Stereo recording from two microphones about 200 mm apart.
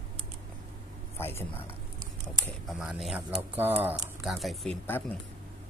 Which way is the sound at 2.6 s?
Centre (ahead or behind).